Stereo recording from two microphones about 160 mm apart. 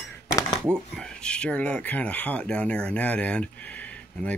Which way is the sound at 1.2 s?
5° left (ahead or behind).